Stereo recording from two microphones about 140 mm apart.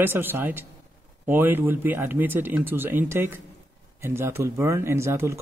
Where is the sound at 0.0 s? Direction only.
15° right (ahead or behind).